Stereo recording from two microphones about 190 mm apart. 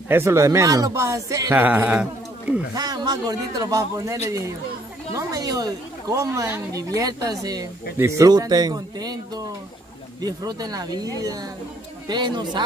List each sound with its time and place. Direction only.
0.1 s speech: 15° right (ahead or behind)
2.7 s a woman's voice: 20° right (ahead or behind)